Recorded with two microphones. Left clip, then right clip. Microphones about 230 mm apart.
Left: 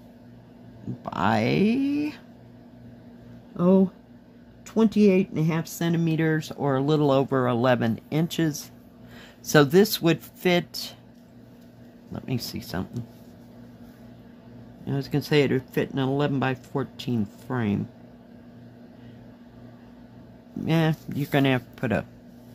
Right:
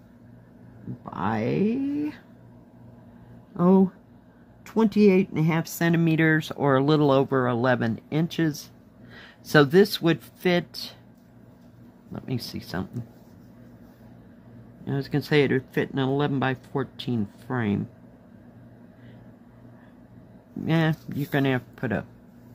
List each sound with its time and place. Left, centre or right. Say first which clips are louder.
1.0 s speech: left 4 dB; centre
3.5 s speech: even; centre
12.1 s speech: left 1 dB; centre
14.9 s speech: even; centre
20.6 s speech: even; centre